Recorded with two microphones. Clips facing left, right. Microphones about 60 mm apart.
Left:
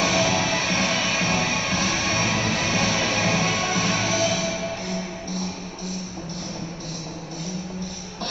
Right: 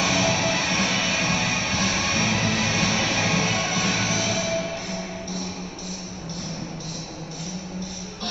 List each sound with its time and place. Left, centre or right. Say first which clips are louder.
0.0 s music: left 1 dB; left